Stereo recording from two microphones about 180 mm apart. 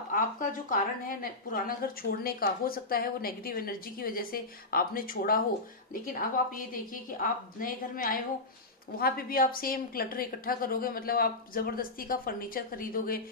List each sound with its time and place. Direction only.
0.1 s a woman's voice: 50° left (ahead or behind)